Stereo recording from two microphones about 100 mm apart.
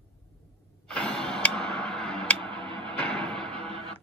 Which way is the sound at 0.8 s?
10° left (ahead or behind).